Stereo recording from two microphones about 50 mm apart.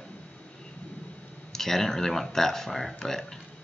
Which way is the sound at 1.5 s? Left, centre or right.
Centre.